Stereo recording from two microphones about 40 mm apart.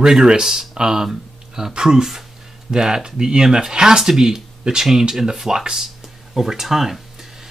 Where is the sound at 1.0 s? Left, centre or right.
Centre.